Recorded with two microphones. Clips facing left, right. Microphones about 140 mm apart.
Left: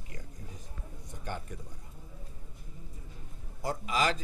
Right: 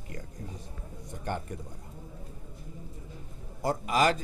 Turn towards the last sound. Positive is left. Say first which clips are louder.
# right 4 dB
turn(degrees=-50)  # may be behind; listen again after turning